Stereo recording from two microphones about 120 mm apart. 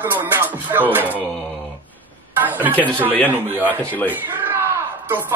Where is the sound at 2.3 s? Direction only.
15° right (ahead or behind).